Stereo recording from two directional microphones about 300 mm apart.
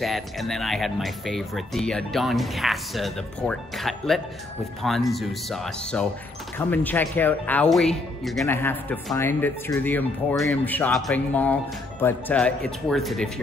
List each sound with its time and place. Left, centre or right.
0.0 s speech: centre